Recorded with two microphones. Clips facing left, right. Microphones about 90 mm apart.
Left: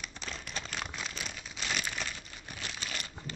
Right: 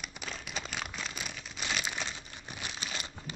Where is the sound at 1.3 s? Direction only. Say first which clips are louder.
Right 1 dB; centre (ahead or behind).